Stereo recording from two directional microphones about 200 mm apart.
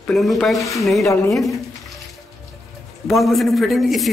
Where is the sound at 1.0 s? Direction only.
15° left (ahead or behind).